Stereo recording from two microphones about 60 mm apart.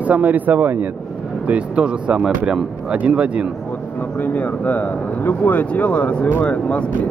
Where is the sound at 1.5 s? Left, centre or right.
Centre.